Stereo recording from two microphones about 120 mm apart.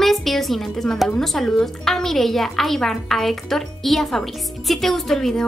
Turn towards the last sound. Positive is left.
turn(degrees=5)  # may be behind; listen again after turning